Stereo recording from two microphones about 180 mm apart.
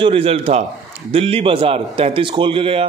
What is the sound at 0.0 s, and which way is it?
A man's voice, 30° right (ahead or behind).